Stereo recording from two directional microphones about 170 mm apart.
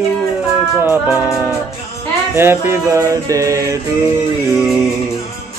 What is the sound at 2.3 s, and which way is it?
Music, 15° right (ahead or behind).